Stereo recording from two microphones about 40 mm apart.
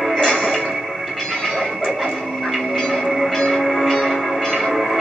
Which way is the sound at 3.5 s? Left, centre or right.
Centre.